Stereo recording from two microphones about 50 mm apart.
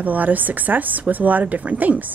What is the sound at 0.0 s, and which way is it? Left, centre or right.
Speech, right.